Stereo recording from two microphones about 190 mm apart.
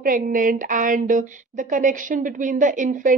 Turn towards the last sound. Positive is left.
turn(degrees=-45)  # may be behind; listen again after turning